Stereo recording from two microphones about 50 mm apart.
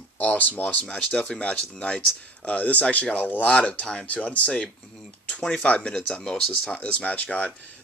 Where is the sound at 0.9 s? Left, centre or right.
Centre.